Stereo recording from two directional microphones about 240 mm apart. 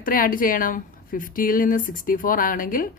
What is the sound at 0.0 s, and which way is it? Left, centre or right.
Speech, left.